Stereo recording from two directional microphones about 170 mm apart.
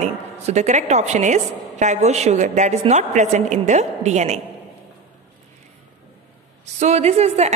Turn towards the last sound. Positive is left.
turn(degrees=-40)  # may be behind; listen again after turning